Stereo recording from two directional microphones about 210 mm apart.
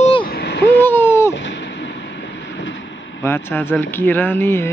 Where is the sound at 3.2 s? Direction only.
10° left (ahead or behind).